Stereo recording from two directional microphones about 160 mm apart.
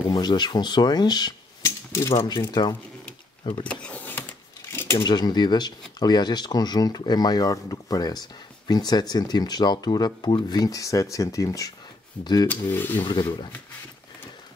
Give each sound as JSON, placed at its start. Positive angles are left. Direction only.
{"t": 0.1, "sound": "cutlery", "side_deg": 25}
{"t": 3.6, "sound": "a sound", "side_deg": 10}
{"t": 4.9, "sound": "speech", "side_deg": 25}
{"t": 13.0, "sound": "speech", "side_deg": 25}